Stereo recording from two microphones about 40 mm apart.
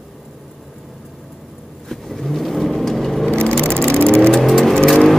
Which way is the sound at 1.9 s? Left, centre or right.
Centre.